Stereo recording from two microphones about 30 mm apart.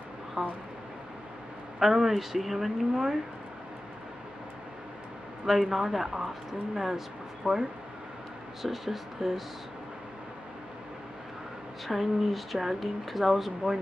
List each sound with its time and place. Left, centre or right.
0.4 s a sound: right
1.8 s speech: centre
5.5 s speech: centre
7.4 s speech: right
8.6 s speech: centre
11.9 s speech: centre